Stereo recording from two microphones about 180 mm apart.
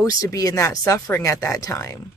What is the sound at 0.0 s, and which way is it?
Speech, 20° left (ahead or behind).